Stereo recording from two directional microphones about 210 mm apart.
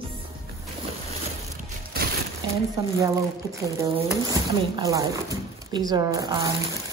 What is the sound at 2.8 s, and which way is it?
Speech, 15° right (ahead or behind).